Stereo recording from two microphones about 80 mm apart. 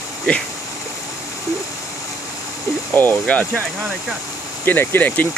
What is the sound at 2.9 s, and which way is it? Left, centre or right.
Speech, left.